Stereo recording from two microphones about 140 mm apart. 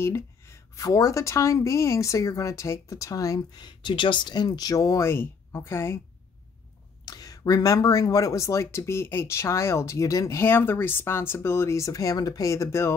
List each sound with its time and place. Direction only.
0.0 s a woman's voice: 20° left (ahead or behind)
7.1 s a woman's voice: 25° left (ahead or behind)